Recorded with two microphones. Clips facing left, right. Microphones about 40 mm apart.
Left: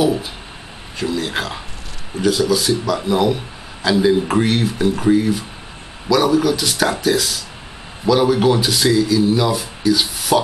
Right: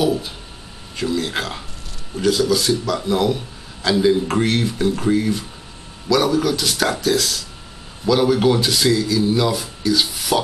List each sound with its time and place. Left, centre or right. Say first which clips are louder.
1.0 s speech: left 1 dB; centre